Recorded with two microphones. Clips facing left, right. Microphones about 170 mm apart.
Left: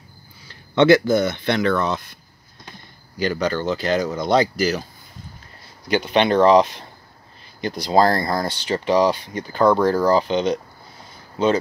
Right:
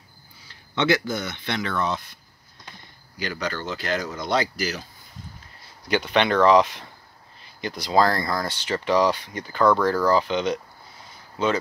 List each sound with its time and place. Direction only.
0.8 s speech: 35° left (ahead or behind)
1.1 s speech: 55° left (ahead or behind)
3.2 s speech: 30° left (ahead or behind)
6.0 s speech: 25° left (ahead or behind)